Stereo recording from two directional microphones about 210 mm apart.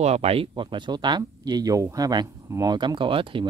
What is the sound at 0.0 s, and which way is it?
Speech, 30° right (ahead or behind).